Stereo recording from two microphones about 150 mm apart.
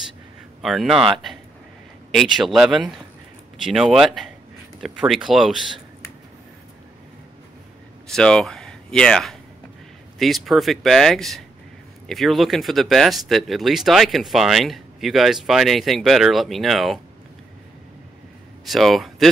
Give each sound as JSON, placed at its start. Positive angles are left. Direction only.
{"t": 0.6, "sound": "speech", "side_deg": 0}
{"t": 2.4, "sound": "speech", "side_deg": 0}
{"t": 8.1, "sound": "speech", "side_deg": 5}
{"t": 18.7, "sound": "speech", "side_deg": 0}